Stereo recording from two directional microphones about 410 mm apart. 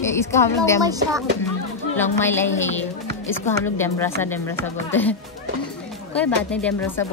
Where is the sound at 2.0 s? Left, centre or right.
Centre.